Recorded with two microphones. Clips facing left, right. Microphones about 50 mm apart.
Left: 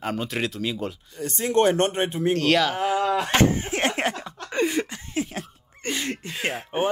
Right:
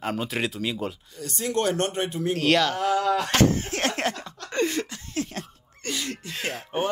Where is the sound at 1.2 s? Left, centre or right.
Left.